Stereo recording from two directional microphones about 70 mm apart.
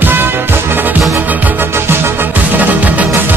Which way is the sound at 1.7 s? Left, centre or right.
Right.